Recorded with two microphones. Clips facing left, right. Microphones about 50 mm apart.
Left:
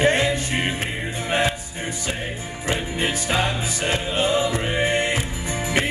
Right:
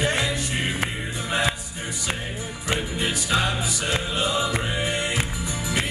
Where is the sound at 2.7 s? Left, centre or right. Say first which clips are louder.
Left 2 dB; left.